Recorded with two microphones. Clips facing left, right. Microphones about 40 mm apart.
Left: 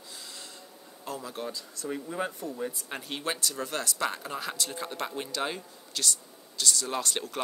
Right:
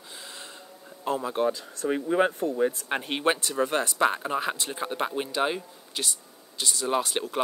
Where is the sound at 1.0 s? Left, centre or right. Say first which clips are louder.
Right 10 dB; right.